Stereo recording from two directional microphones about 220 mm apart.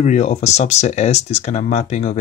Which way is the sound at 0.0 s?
30° left (ahead or behind).